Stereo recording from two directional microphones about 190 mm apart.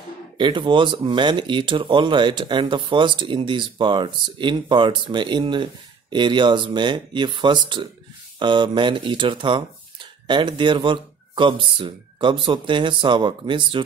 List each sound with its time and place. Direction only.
0.4 s speech: 25° right (ahead or behind)